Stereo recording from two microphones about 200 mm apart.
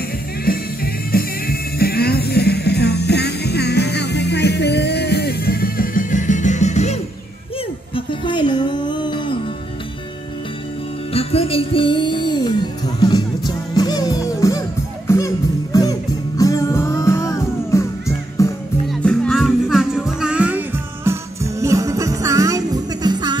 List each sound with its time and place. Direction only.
0.5 s music: 50° left (ahead or behind); by 9.4 s 25° left (ahead or behind)
11.1 s music: 30° left (ahead or behind)
18.9 s music: centre (ahead or behind); by 23.3 s 20° right (ahead or behind)